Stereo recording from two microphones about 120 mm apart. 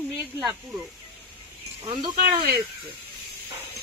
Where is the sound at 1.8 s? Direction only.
45° right (ahead or behind).